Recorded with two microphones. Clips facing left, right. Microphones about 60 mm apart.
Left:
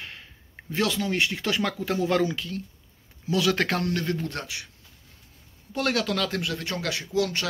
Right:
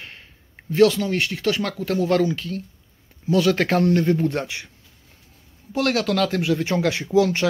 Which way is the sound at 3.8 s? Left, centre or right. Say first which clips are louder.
Right 9 dB; right.